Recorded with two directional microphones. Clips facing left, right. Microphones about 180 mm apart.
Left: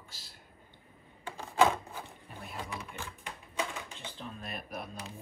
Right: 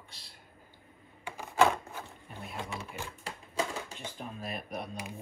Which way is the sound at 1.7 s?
15° left (ahead or behind).